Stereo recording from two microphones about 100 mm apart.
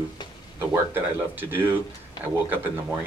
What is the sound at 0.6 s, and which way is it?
Speech, 20° right (ahead or behind).